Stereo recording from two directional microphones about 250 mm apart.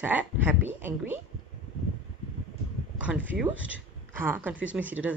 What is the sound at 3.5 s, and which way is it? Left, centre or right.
Speech, right.